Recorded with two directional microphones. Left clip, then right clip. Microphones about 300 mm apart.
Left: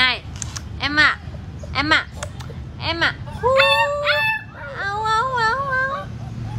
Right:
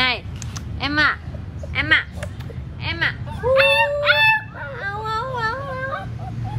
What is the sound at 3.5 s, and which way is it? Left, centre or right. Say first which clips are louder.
Dog: right 1 dB; centre.